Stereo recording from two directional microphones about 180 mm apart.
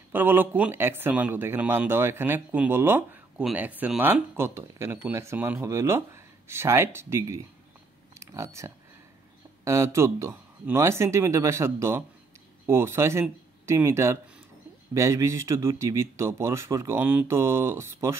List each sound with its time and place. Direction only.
0.1 s speech: 10° right (ahead or behind)